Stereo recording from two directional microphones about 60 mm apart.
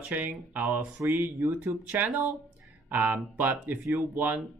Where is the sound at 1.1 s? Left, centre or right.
Right.